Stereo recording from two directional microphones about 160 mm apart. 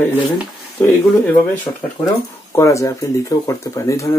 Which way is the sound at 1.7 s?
20° left (ahead or behind).